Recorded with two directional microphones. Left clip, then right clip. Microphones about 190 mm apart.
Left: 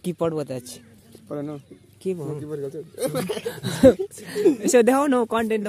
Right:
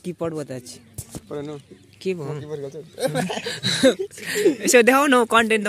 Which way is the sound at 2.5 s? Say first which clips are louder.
Left 1 dB; 65° left (ahead or behind).